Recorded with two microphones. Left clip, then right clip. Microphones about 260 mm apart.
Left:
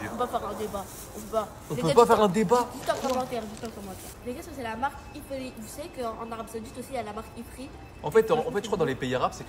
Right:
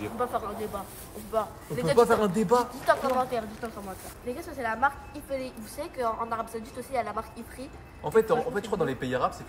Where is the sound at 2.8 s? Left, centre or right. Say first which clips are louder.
Right 3 dB; centre.